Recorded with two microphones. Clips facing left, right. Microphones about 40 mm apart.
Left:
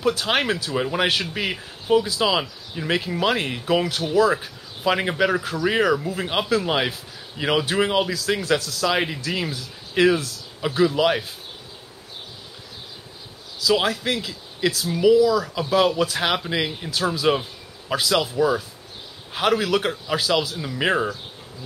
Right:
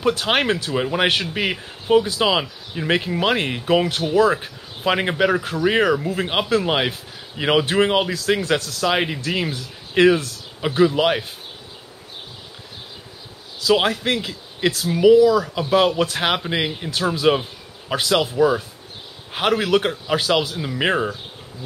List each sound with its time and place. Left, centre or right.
0.0 s a man's voice: centre
13.6 s a man's voice: right
17.1 s a sound: centre
17.9 s a man's voice: centre